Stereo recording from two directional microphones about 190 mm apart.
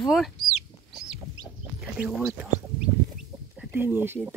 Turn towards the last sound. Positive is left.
turn(degrees=-10)  # may be behind; listen again after turning